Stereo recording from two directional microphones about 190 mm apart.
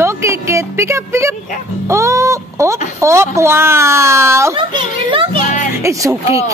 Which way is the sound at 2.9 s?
15° right (ahead or behind).